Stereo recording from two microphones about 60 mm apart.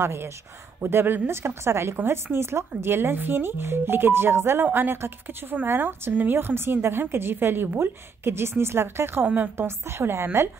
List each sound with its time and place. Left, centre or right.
0.0 s a woman's voice: right
9.2 s speech: right
9.6 s speech: right